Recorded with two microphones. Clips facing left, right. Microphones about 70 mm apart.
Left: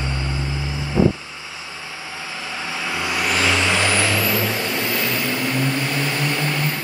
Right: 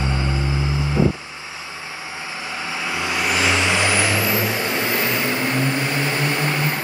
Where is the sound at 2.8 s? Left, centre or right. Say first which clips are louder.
Even; right.